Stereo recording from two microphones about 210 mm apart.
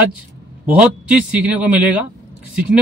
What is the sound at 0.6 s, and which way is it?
A man's voice, 5° right (ahead or behind).